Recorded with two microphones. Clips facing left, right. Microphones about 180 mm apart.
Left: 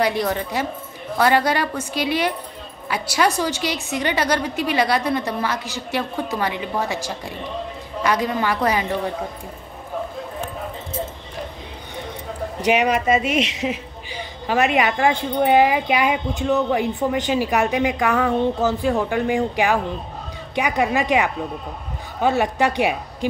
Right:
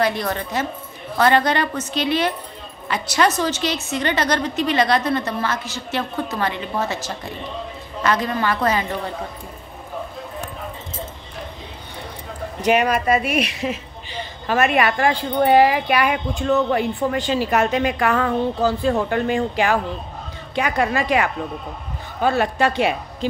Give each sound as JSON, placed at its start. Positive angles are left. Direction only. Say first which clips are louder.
{"t": 0.0, "sound": "speech", "louder": "left 1 dB", "side_deg": 15}
{"t": 12.6, "sound": "speech", "louder": "even", "side_deg": 15}